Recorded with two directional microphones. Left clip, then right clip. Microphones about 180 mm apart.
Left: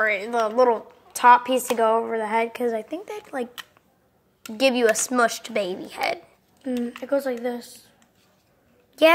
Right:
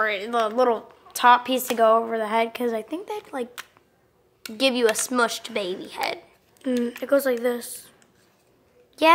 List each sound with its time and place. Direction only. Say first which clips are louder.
0.0 s a woman's voice: left 1 dB; centre (ahead or behind)
4.6 s speech: left 2 dB; 10° left (ahead or behind)
6.6 s speech: right 3 dB; 35° right (ahead or behind)
9.0 s speech: left 1 dB; 10° left (ahead or behind)